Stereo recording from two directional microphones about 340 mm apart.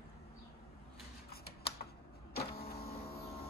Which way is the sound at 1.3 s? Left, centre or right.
Left.